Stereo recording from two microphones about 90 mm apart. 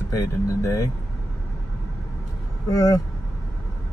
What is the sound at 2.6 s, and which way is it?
Speech, 40° left (ahead or behind).